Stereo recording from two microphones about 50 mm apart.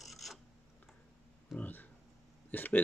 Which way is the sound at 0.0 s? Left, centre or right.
Centre.